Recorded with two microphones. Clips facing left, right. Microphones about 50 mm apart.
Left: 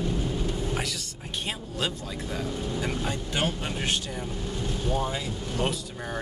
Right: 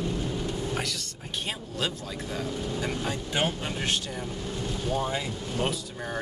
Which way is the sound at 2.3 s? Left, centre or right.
Centre.